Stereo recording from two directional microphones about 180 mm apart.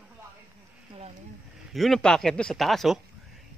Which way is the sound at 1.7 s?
Centre (ahead or behind).